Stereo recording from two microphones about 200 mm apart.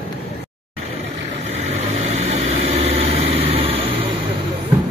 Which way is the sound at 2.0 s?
30° right (ahead or behind).